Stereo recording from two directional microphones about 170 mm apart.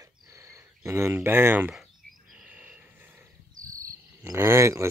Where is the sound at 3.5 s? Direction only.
50° right (ahead or behind).